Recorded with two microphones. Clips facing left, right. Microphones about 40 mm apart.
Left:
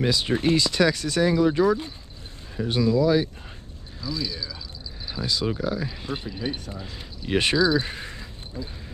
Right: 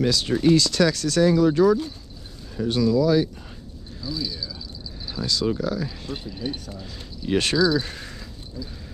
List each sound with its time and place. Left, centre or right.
0.0 s speech: centre